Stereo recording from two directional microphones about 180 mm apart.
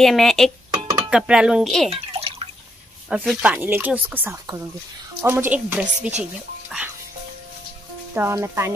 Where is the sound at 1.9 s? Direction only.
35° right (ahead or behind).